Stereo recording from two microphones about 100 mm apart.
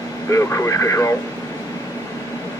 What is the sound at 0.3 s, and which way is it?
Speech, 30° left (ahead or behind).